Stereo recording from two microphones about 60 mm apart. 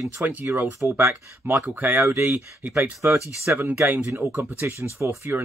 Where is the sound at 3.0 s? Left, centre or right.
Right.